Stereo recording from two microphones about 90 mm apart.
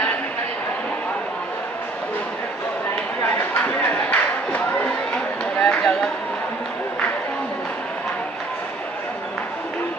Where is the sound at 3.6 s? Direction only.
15° left (ahead or behind).